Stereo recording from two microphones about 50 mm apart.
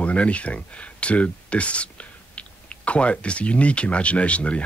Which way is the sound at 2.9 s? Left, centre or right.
Left.